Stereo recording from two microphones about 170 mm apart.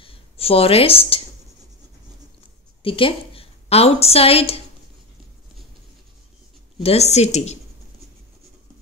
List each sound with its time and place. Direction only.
0.0 s speech: 35° left (ahead or behind)
2.8 s a woman's voice: 30° left (ahead or behind)
6.8 s speech: 35° left (ahead or behind)